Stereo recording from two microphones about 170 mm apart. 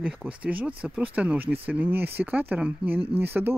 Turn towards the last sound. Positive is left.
turn(degrees=-10)  # may be behind; listen again after turning